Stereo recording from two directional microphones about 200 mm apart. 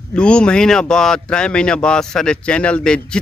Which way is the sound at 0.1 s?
5° left (ahead or behind).